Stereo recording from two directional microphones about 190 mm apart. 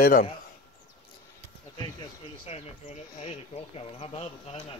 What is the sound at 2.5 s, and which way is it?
Speech, 35° left (ahead or behind).